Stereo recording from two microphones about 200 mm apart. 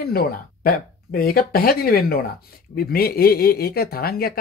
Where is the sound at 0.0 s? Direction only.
50° left (ahead or behind).